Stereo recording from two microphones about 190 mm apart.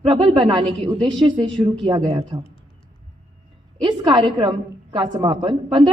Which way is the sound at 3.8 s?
25° right (ahead or behind).